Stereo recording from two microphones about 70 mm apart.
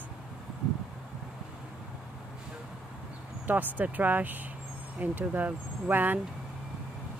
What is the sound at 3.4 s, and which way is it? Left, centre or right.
Speech, right.